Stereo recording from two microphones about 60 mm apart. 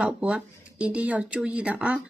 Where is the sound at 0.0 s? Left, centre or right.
Centre.